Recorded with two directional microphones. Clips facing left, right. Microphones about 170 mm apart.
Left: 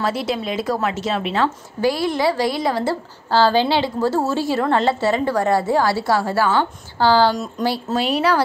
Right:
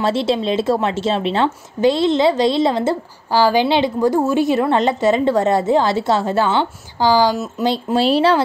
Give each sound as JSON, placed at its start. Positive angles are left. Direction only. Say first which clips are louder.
{"t": 0.0, "sound": "a woman's voice", "louder": "right 5 dB", "side_deg": -25}
{"t": 7.6, "sound": "a woman's voice", "louder": "right 4 dB", "side_deg": -25}